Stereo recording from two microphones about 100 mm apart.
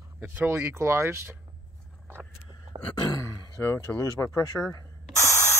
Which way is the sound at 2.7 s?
60° right (ahead or behind).